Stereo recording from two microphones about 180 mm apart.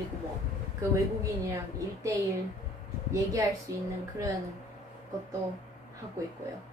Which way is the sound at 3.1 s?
20° right (ahead or behind).